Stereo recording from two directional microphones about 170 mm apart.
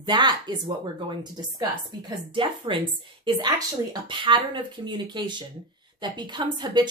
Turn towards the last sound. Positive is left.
turn(degrees=-25)  # may be behind; listen again after turning